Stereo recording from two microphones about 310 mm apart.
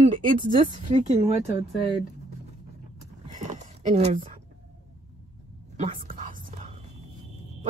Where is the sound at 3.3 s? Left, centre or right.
Right.